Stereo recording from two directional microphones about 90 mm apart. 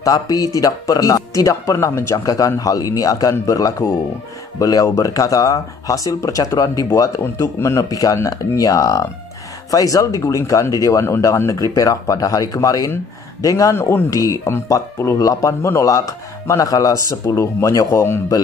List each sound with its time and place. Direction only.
0.0 s speech: 40° left (ahead or behind); by 14.2 s 25° left (ahead or behind)
14.2 s speech: 40° left (ahead or behind)